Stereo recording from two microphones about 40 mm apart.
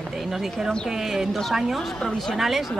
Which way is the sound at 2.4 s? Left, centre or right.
Centre.